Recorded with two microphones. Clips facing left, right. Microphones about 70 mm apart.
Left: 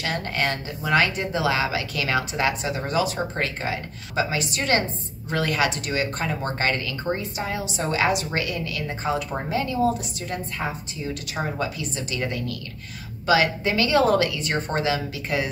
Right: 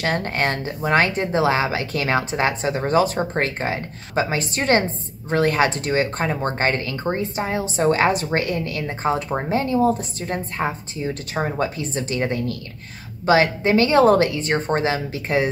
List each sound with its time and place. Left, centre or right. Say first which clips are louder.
0.0 s speech: right 4 dB; right